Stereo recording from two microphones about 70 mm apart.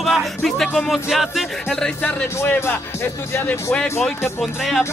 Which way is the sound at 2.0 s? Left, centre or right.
Left.